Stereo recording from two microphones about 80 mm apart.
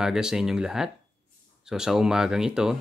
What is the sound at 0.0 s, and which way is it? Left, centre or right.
Speech, centre.